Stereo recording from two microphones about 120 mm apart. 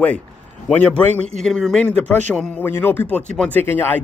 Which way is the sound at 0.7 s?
10° left (ahead or behind).